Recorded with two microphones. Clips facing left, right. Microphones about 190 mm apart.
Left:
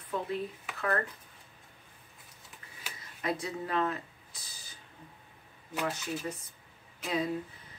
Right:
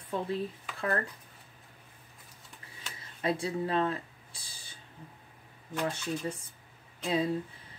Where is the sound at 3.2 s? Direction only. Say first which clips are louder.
Right 3 dB; 30° right (ahead or behind).